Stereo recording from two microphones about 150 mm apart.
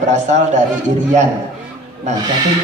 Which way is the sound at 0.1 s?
50° right (ahead or behind).